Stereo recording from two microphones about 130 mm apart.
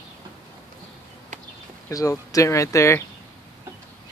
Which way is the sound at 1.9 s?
25° left (ahead or behind).